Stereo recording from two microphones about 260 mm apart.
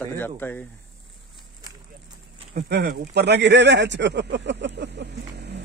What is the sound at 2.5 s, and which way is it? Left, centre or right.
Speech, right.